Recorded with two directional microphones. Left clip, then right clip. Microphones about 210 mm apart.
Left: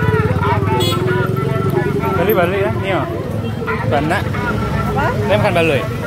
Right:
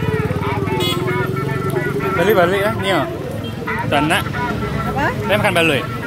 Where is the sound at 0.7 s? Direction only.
30° left (ahead or behind).